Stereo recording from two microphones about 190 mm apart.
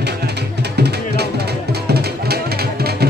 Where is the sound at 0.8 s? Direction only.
60° right (ahead or behind).